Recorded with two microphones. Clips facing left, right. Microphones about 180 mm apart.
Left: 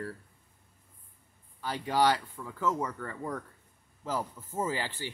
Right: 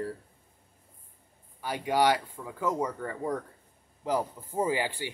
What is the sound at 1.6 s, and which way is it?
Speech, 15° right (ahead or behind).